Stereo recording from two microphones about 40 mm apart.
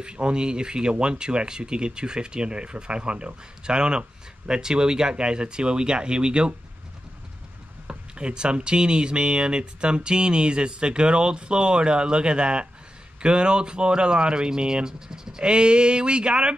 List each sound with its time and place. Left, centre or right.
0.0 s speech: right
7.9 s speech: right